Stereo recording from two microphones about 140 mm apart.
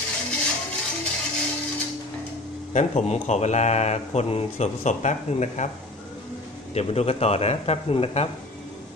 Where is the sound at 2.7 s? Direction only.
50° left (ahead or behind).